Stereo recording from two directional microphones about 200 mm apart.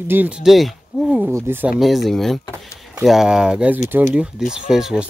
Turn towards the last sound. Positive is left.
turn(degrees=-5)  # may be behind; listen again after turning